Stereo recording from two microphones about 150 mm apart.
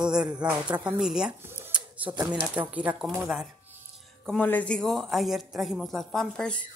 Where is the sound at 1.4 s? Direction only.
10° right (ahead or behind).